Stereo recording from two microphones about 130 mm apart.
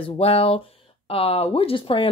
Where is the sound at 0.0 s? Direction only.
50° left (ahead or behind).